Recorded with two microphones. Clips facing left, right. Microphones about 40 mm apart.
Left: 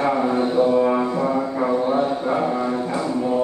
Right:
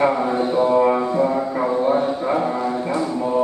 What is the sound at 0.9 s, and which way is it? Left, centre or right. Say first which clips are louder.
Music: right 1 dB; centre.